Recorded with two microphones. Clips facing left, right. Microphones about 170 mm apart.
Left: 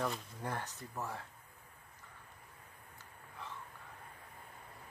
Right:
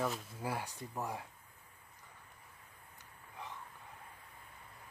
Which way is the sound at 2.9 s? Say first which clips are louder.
Right 1 dB; 15° right (ahead or behind).